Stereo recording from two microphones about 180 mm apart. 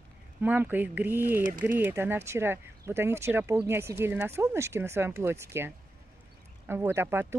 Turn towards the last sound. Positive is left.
turn(degrees=-15)  # may be behind; listen again after turning